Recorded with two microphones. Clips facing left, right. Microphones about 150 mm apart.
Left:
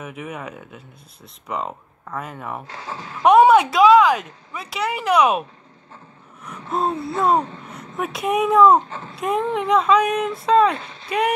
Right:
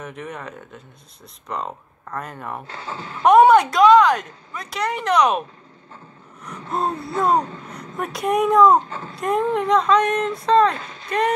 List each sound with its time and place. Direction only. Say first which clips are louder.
0.0 s speech: left 1 dB; 5° left (ahead or behind)
2.6 s speech: right 1 dB; 30° right (ahead or behind)
3.2 s speech: even; centre (ahead or behind)
6.4 s a sound: left 1 dB; centre (ahead or behind)
7.2 s speech: even; 5° left (ahead or behind)
10.8 s a sound: right 1 dB; 40° right (ahead or behind)
11.1 s speech: even; 10° left (ahead or behind)